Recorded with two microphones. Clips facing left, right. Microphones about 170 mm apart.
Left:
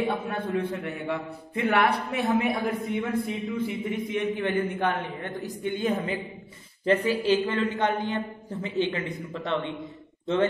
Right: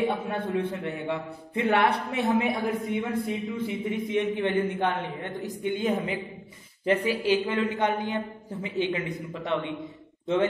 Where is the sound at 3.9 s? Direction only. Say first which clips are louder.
Right 1 dB; 25° right (ahead or behind).